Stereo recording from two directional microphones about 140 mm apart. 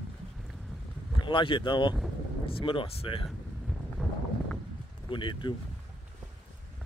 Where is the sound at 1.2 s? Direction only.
35° left (ahead or behind).